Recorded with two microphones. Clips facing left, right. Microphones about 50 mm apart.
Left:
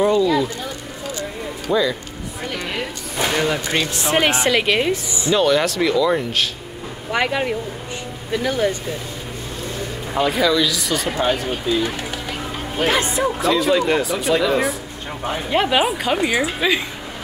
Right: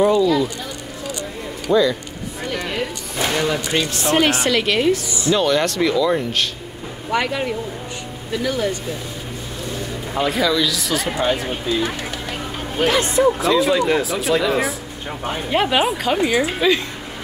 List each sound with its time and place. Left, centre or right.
0.0 s speech: centre
1.7 s speech: centre
2.4 s a sound: centre
4.3 s speech: centre
5.3 s speech: centre
8.3 s speech: centre
10.1 s speech: centre
11.1 s a sound: centre
13.0 s speech: centre